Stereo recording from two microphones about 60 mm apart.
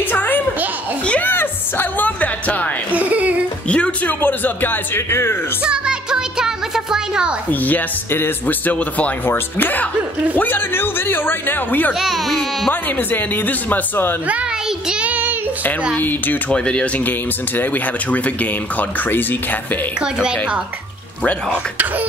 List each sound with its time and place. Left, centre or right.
0.1 s a sound: left
1.2 s music: left
2.9 s whimper: right
3.6 s a man's voice: left
5.6 s music: centre
8.1 s speech: left
9.2 s a man's voice: left
11.9 s speech: centre
12.8 s a man's voice: left
14.9 s child singing: right
16.0 s a man's voice: left
16.4 s speech: centre
20.0 s a woman's voice: centre